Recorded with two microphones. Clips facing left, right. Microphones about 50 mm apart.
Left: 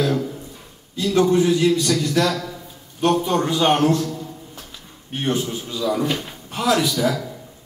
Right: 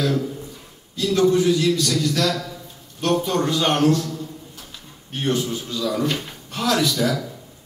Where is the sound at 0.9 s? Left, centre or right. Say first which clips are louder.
Left 1 dB; left.